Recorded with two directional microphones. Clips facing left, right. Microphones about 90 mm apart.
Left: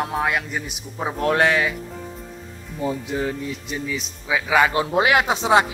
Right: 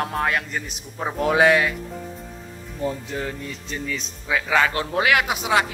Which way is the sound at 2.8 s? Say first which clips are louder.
Left 3 dB; 15° left (ahead or behind).